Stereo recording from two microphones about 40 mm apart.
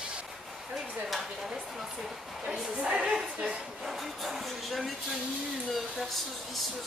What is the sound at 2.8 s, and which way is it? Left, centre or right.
Speech, right.